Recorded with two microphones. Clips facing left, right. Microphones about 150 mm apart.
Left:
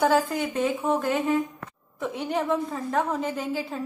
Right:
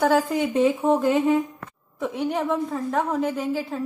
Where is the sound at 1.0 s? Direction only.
15° right (ahead or behind).